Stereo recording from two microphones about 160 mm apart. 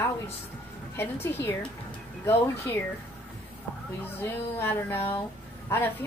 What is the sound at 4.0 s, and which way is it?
Speech, 15° left (ahead or behind).